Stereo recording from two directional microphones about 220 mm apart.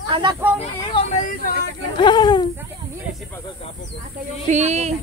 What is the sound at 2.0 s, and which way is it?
Speech, 20° left (ahead or behind).